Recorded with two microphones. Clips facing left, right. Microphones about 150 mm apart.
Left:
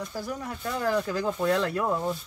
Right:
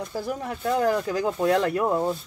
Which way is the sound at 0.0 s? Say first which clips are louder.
Right 4 dB; 25° right (ahead or behind).